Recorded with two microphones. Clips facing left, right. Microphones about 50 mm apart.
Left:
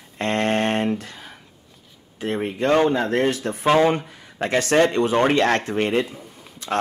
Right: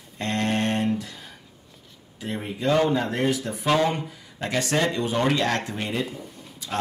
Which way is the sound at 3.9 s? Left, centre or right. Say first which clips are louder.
Left 6 dB; left.